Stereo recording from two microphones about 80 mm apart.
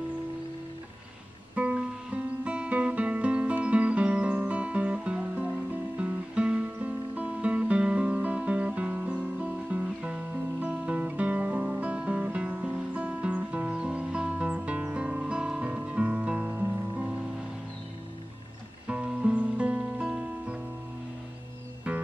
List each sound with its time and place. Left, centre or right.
1.5 s music: centre
16.4 s music: right
18.9 s music: centre